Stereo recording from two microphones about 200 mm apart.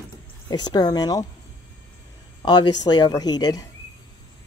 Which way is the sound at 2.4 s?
20° left (ahead or behind).